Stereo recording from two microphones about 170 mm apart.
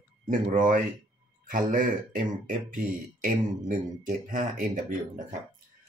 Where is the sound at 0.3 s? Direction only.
50° right (ahead or behind).